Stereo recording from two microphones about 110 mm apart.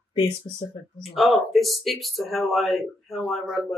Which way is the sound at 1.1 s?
Centre (ahead or behind).